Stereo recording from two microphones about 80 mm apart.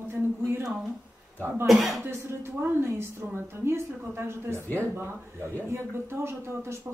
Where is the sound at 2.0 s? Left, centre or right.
Right.